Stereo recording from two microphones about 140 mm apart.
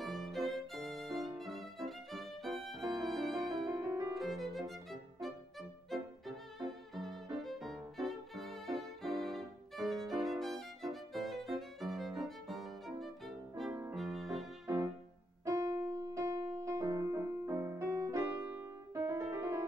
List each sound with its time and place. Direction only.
0.0 s violin: centre (ahead or behind)
3.0 s music: centre (ahead or behind)
3.3 s music: 25° right (ahead or behind)
4.2 s violin: centre (ahead or behind)
5.2 s music: centre (ahead or behind)
7.0 s violin: centre (ahead or behind)
13.9 s music: centre (ahead or behind)
15.4 s music: 20° right (ahead or behind)